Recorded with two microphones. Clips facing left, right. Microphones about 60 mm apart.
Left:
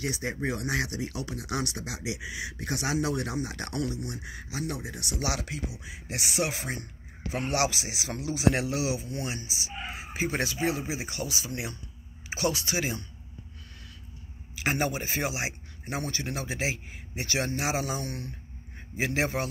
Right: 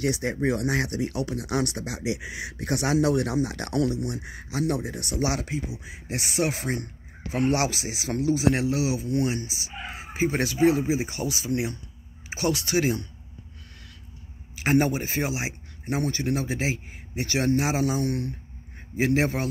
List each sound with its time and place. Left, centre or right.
0.0 s speech: right
4.2 s speech: right
9.0 s speech: right
10.4 s speech: right
14.5 s speech: right
16.1 s speech: right
18.0 s speech: right
18.9 s speech: right